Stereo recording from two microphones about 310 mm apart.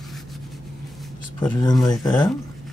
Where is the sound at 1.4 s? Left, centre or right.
Centre.